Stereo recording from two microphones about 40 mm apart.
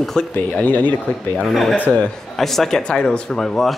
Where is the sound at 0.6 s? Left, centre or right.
Left.